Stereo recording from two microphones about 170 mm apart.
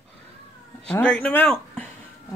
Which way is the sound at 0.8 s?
5° left (ahead or behind).